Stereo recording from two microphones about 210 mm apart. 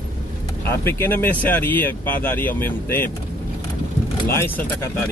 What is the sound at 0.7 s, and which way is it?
Speech, 10° left (ahead or behind).